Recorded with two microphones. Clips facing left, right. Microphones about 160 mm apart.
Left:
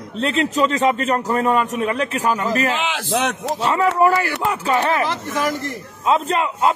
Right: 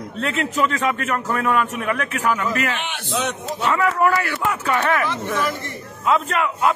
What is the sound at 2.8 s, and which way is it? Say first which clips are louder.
Speech: left 4 dB; 90° left.